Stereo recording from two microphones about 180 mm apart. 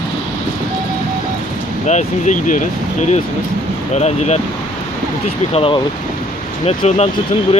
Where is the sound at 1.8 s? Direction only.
40° left (ahead or behind).